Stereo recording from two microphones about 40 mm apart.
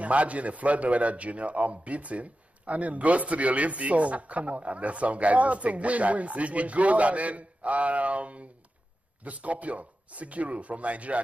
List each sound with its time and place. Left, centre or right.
0.0 s a man's voice: right